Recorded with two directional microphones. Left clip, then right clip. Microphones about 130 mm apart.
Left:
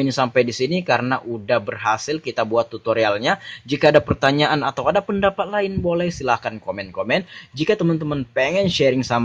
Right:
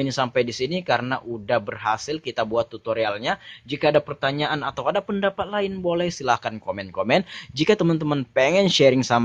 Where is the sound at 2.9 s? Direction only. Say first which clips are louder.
Left 8 dB; 5° right (ahead or behind); by 7.0 s 25° right (ahead or behind).